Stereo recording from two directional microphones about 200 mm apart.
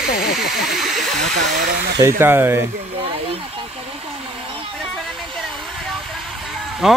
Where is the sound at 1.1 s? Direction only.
40° right (ahead or behind).